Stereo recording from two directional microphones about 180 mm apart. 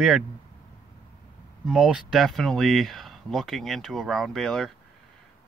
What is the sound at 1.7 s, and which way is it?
Speech, 5° right (ahead or behind).